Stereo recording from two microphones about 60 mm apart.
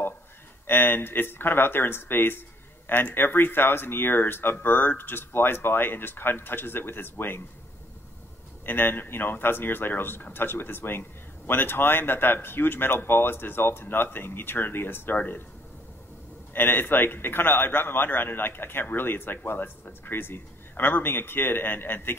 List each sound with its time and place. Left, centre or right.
0.7 s a man's voice: left
8.6 s a man's voice: left
16.5 s a man's voice: left